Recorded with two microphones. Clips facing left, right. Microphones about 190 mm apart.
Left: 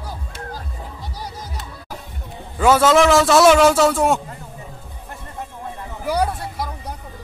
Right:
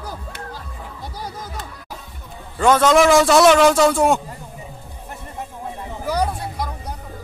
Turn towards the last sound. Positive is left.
turn(degrees=5)  # may be behind; listen again after turning